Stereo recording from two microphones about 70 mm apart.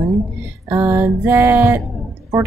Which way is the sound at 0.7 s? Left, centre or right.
Right.